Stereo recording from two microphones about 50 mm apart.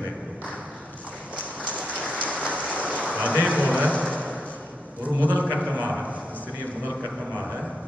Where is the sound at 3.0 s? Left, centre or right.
Right.